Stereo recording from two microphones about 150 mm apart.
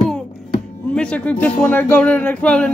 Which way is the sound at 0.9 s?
10° left (ahead or behind).